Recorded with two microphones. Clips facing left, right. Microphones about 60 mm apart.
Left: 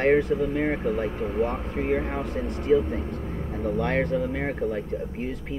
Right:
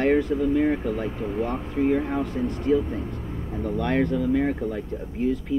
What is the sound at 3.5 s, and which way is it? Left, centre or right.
Speech, left.